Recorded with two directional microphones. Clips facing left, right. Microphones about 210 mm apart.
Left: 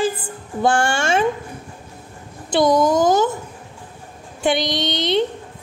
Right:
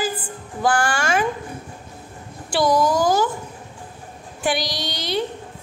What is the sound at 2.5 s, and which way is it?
Speech, 20° left (ahead or behind).